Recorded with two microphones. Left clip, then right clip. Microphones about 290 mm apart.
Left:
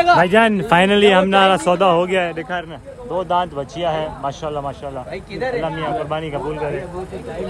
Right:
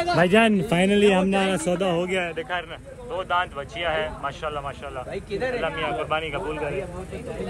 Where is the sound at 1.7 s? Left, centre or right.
Left.